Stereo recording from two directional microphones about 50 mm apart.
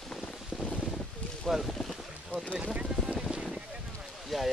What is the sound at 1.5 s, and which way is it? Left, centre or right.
Boat, centre.